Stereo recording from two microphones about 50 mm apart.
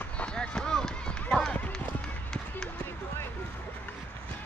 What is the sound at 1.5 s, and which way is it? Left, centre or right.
Speech, left.